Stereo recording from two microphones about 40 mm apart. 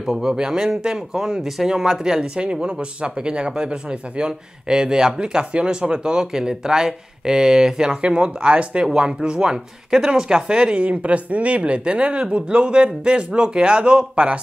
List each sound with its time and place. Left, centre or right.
0.1 s speech: centre
2.4 s speech: right
10.8 s speech: right